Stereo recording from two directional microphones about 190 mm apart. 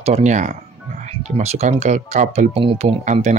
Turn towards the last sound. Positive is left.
turn(degrees=-35)  # may be behind; listen again after turning